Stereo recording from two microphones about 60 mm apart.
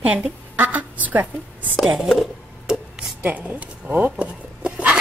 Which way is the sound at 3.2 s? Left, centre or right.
Right.